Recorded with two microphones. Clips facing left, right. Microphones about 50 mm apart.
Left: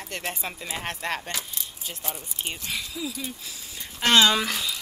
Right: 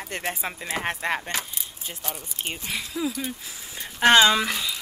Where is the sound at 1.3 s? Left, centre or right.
Right.